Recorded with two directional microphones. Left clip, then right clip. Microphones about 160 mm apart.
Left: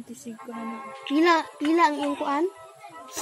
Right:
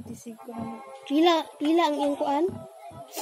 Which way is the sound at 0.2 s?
Centre (ahead or behind).